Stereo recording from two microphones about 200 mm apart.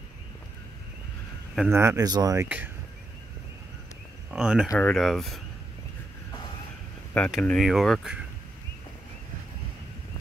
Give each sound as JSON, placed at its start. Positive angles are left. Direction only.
{"t": 1.7, "sound": "speech", "side_deg": -15}
{"t": 2.4, "sound": "speech", "side_deg": -5}
{"t": 4.3, "sound": "speech", "side_deg": -5}
{"t": 4.6, "sound": "speech", "side_deg": 10}
{"t": 7.2, "sound": "speech", "side_deg": 0}